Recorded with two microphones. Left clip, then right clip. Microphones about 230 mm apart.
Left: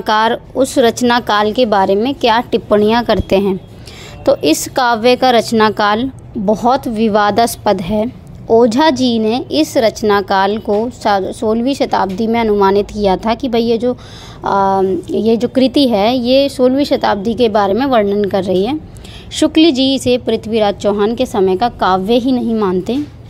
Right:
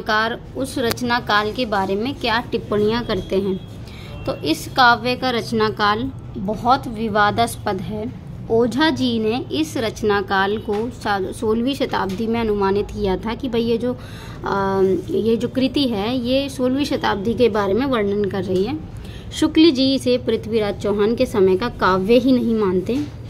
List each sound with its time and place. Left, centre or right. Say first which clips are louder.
0.0 s a woman's voice: left 7 dB; left; by 22.9 s centre